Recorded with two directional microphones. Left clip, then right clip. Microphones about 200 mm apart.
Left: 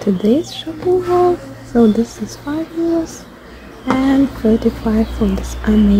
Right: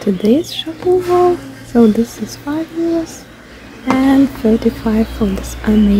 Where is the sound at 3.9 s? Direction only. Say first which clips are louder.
Right 3 dB; 5° right (ahead or behind).